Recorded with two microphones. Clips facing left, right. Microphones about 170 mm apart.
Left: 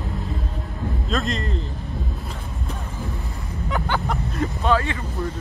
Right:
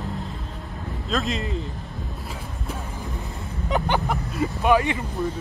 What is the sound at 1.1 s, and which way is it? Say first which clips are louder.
Speech: right 1 dB; centre (ahead or behind).